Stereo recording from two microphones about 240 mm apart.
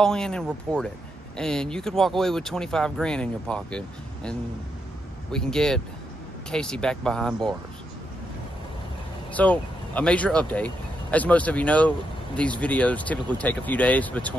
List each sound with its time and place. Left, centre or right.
0.0 s speech: centre
9.4 s speech: centre